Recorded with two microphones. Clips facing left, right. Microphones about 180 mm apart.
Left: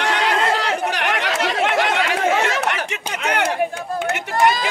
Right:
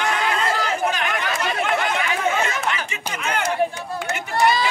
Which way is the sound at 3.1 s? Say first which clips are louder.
Left 3 dB; 70° left (ahead or behind).